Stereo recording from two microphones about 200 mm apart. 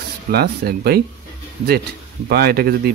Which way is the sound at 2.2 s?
50° right (ahead or behind).